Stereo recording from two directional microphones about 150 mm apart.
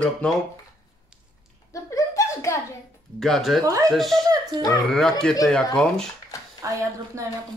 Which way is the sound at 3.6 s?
20° right (ahead or behind).